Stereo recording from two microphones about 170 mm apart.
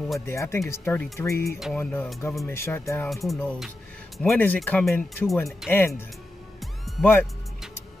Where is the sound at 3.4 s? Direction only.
Centre (ahead or behind).